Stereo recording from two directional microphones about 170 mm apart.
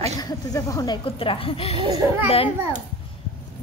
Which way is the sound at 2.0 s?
10° right (ahead or behind).